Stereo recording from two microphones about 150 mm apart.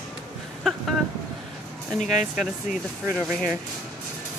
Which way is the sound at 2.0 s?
55° left (ahead or behind).